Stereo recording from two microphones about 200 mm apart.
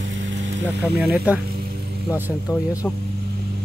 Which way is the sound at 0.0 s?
65° right (ahead or behind).